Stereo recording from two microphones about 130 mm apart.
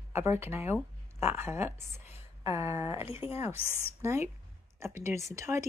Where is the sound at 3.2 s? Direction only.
50° left (ahead or behind).